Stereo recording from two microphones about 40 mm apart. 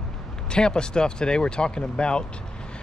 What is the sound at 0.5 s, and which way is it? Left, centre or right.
Speech, left.